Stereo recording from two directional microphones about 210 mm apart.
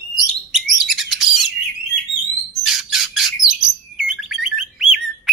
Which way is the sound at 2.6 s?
Centre (ahead or behind).